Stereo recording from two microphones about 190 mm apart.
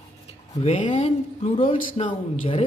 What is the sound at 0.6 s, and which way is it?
Speech, 35° left (ahead or behind).